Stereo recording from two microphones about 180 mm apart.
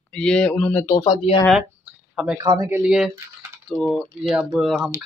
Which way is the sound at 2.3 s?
20° right (ahead or behind).